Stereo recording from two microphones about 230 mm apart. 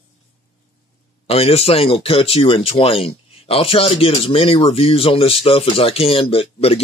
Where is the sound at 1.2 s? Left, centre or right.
Left.